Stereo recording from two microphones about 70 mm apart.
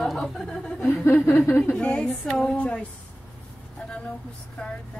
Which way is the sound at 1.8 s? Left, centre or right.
Centre.